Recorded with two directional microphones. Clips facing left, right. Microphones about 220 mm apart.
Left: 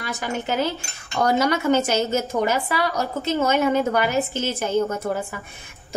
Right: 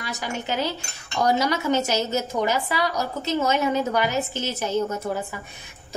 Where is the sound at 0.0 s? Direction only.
55° left (ahead or behind).